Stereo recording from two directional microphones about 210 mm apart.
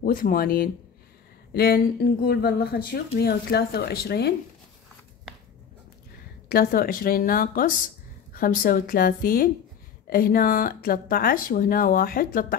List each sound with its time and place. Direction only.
0.0 s speech: 45° left (ahead or behind)
6.5 s speech: 45° left (ahead or behind)